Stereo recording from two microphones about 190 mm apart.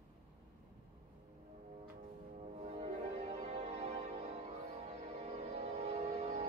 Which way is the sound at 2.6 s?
35° right (ahead or behind).